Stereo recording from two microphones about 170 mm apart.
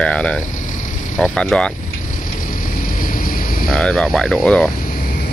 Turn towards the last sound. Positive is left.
turn(degrees=5)  # may be behind; listen again after turning